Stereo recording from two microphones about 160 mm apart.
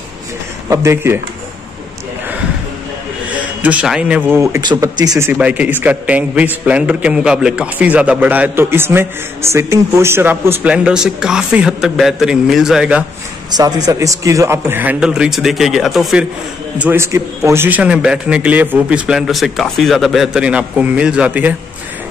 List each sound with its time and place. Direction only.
0.7 s a man's voice: 15° right (ahead or behind)
3.6 s a man's voice: 5° right (ahead or behind)
4.4 s speech: 20° right (ahead or behind)
5.3 s a man's voice: 10° right (ahead or behind)
13.5 s a man's voice: 25° right (ahead or behind); by 16.3 s centre (ahead or behind)
16.7 s a man's voice: 10° right (ahead or behind)